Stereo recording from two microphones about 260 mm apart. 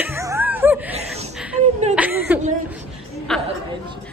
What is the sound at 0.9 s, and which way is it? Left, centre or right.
Speech, right.